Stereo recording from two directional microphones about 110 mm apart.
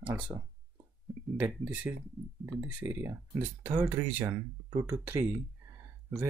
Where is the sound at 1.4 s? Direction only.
15° right (ahead or behind).